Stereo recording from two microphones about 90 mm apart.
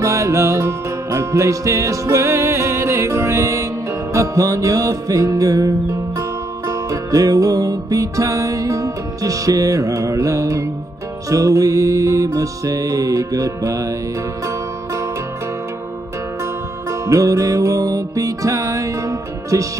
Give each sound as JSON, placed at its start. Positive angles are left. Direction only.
{"t": 0.0, "sound": "music", "side_deg": -35}
{"t": 6.7, "sound": "music", "side_deg": -40}
{"t": 17.0, "sound": "music", "side_deg": -40}